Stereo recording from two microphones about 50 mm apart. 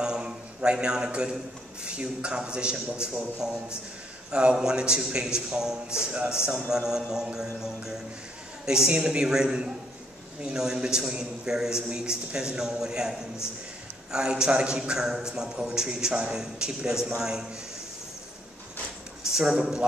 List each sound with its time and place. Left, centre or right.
0.0 s a sound: centre
1.9 s a man's voice: centre
14.1 s a man's voice: centre
19.3 s a man's voice: centre